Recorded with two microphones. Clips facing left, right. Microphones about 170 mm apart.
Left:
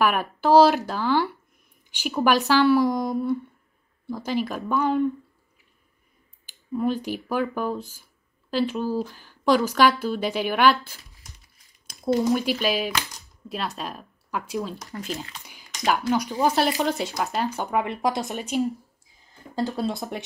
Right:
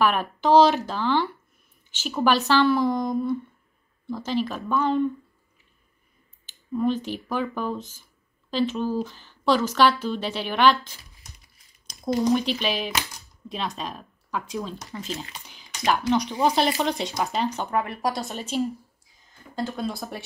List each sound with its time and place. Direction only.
0.0 s a woman's voice: 10° left (ahead or behind)
6.7 s a woman's voice: 10° left (ahead or behind)
12.2 s a woman's voice: 5° left (ahead or behind)
19.5 s speech: 35° left (ahead or behind)
19.9 s speech: 20° left (ahead or behind)